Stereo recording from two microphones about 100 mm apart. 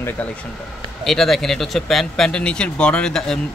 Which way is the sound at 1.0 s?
Centre (ahead or behind).